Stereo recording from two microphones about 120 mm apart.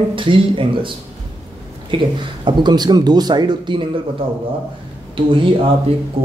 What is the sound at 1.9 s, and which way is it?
Speech, 40° right (ahead or behind).